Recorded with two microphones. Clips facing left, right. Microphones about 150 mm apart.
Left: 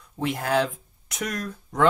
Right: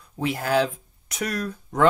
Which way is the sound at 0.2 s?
5° right (ahead or behind).